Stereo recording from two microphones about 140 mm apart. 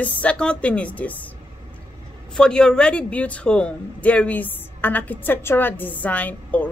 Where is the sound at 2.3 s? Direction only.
5° left (ahead or behind).